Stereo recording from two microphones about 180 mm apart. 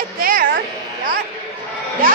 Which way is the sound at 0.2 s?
50° right (ahead or behind).